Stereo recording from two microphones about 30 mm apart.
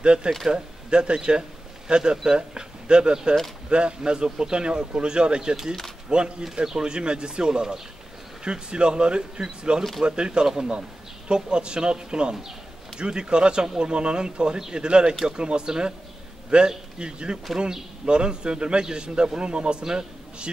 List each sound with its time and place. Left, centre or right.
0.0 s a man's voice: right
12.4 s a sound: centre
13.0 s a man's voice: right